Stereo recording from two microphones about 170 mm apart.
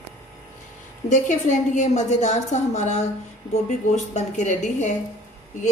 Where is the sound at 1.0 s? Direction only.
45° left (ahead or behind).